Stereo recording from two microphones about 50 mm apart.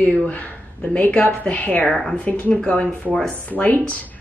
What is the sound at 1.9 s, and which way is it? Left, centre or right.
Speech, centre.